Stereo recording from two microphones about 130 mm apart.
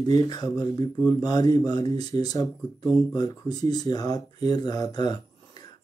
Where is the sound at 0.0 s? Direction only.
30° left (ahead or behind).